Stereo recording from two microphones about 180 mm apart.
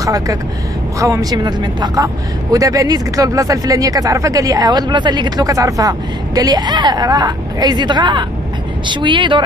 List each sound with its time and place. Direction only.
0.0 s speech: 20° right (ahead or behind)